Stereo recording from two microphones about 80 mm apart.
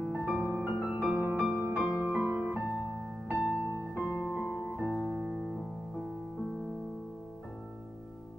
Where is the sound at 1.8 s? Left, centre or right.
Centre.